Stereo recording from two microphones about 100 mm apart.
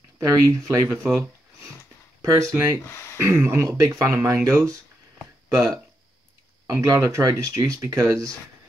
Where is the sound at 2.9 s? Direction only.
30° left (ahead or behind).